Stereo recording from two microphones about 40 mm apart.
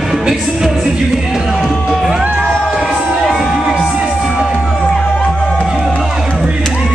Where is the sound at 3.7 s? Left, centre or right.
Centre.